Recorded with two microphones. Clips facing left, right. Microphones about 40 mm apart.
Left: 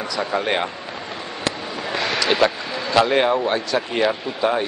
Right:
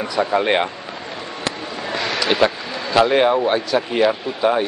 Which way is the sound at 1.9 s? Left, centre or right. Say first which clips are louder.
Even; centre.